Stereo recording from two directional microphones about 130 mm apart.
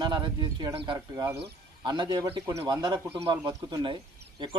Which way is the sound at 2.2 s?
20° right (ahead or behind).